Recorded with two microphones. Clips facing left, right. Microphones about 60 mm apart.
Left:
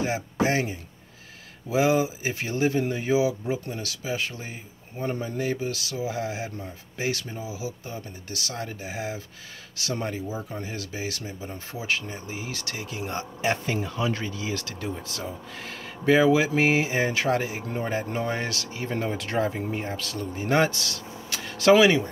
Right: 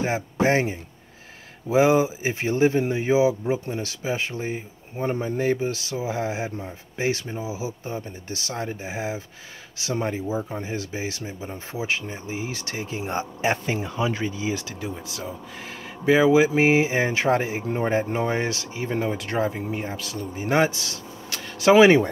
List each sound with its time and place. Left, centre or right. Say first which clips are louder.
0.0 s speech: right 3 dB; right
21.3 s a sound: even; centre
21.7 s speech: right 6 dB; right